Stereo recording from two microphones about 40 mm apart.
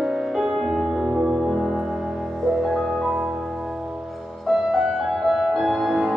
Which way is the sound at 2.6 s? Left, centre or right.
Centre.